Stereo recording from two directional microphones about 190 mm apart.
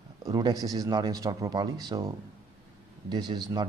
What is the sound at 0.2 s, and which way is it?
A man's voice, 20° right (ahead or behind).